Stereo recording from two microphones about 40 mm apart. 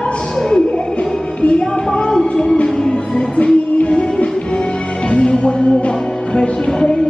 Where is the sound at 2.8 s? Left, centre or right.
Left.